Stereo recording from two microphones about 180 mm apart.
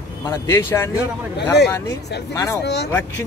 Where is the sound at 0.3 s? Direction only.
15° left (ahead or behind).